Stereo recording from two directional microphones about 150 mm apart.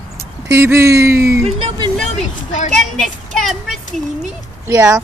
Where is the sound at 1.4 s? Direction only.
35° right (ahead or behind).